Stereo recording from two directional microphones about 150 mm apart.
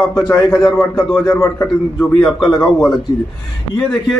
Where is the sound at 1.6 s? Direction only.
5° left (ahead or behind).